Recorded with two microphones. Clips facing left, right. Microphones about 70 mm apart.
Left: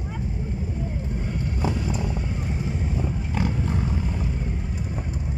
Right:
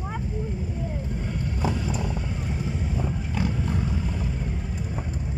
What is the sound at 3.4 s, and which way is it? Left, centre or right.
Roaring cats, left.